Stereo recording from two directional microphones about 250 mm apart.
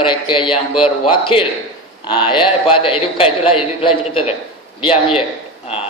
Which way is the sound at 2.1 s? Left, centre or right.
Centre.